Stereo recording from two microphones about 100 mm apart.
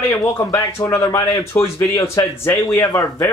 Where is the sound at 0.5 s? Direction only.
35° left (ahead or behind).